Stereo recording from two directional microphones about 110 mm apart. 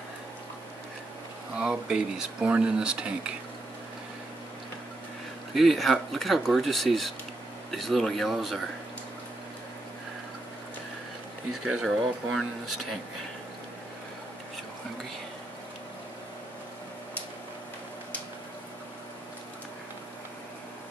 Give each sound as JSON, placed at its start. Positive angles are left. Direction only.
{"t": 1.6, "sound": "speech", "side_deg": -5}
{"t": 5.5, "sound": "speech", "side_deg": 0}
{"t": 11.6, "sound": "speech", "side_deg": -5}